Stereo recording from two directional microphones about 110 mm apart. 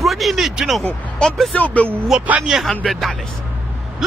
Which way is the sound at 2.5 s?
5° right (ahead or behind).